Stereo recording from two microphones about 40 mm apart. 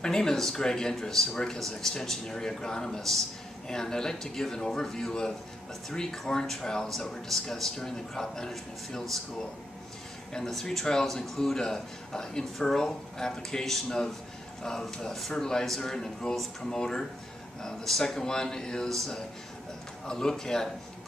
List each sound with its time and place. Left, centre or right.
0.0 s a man's voice: centre
10.5 s a man's voice: centre
17.8 s a man's voice: centre
18.9 s speech: centre
20.1 s a man's voice: centre